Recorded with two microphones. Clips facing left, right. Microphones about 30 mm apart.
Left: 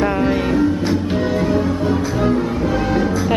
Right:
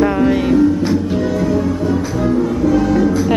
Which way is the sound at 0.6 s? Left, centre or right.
Left.